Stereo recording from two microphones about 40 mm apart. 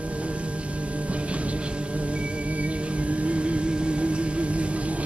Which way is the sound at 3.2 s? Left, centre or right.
Right.